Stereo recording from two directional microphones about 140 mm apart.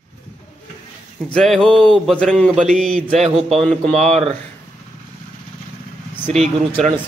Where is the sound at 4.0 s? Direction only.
50° right (ahead or behind).